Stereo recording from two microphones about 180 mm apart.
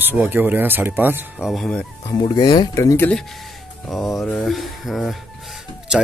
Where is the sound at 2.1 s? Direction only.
25° left (ahead or behind).